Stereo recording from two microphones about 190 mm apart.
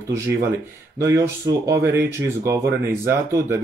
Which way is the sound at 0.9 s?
15° right (ahead or behind).